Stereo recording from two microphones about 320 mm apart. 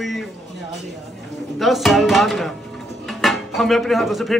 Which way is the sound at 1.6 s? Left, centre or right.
Centre.